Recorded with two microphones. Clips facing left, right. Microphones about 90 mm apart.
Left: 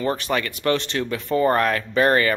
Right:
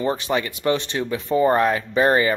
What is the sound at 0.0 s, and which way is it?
Speech, 20° right (ahead or behind).